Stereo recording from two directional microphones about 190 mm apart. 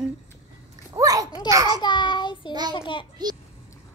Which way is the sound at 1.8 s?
25° left (ahead or behind).